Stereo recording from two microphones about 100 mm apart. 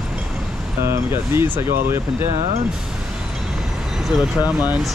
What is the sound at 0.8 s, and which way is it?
Speech, 25° right (ahead or behind).